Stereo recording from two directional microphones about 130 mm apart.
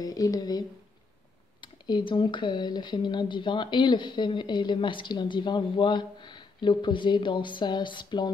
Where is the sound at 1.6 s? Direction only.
35° left (ahead or behind).